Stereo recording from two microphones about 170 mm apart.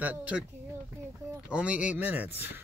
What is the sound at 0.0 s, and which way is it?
Speech, 10° right (ahead or behind).